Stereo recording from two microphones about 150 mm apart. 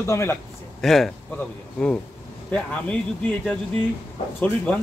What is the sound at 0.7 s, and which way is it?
Speech, centre (ahead or behind).